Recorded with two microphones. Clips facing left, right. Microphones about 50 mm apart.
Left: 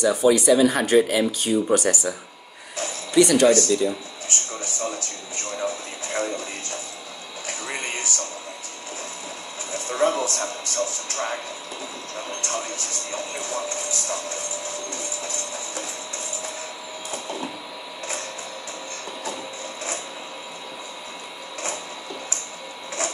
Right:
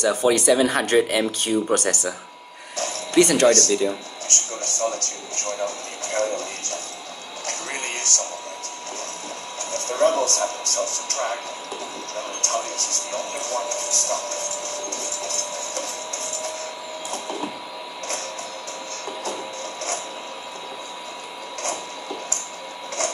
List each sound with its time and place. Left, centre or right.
0.0 s speech: right
3.2 s speech: right
3.4 s speech: centre
7.4 s a sound: centre
9.7 s speech: centre
12.4 s speech: centre